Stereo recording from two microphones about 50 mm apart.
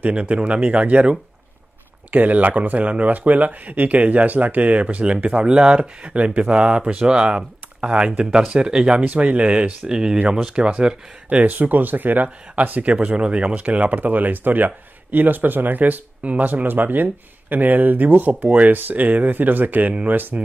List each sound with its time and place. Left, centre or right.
0.0 s speech: right
9.0 s speech: right